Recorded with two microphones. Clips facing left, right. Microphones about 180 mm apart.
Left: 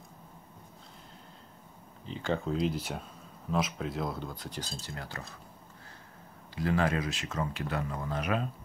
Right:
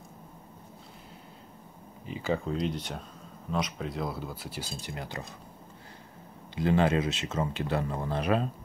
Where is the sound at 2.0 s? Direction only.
5° right (ahead or behind).